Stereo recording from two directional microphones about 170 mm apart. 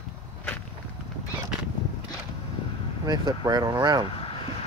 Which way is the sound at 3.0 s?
25° right (ahead or behind).